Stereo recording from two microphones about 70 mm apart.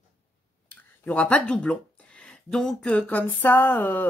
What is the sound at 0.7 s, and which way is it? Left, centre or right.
Speech, left.